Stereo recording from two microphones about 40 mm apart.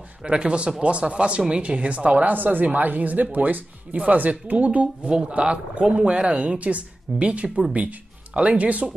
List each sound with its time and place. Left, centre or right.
0.2 s speech: right
2.3 s speech: right
5.0 s speech: right